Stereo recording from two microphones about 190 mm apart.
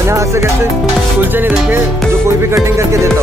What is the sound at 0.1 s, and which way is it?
Speech, 15° right (ahead or behind).